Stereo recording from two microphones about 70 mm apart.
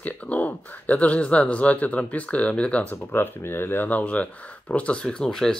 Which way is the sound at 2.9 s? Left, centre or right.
Left.